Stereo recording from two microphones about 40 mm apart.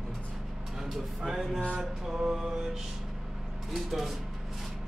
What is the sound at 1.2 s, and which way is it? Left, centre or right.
Mantra, centre.